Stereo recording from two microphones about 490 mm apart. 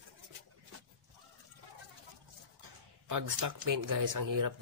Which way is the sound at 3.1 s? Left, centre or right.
Right.